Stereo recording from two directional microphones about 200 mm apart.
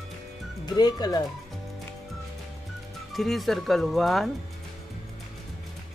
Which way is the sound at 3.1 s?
Centre (ahead or behind).